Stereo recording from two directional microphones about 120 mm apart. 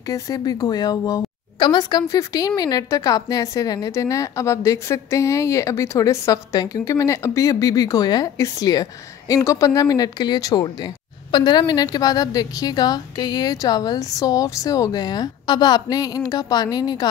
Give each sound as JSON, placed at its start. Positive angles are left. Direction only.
{"t": 0.0, "sound": "a woman's voice", "side_deg": 30}